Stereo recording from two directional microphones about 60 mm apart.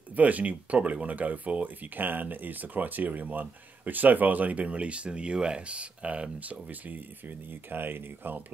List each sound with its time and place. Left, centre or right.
0.1 s speech: right
7.7 s speech: right